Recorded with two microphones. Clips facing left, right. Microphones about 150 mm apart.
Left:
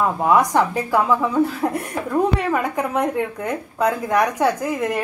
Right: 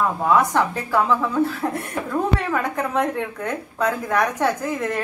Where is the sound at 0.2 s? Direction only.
15° left (ahead or behind).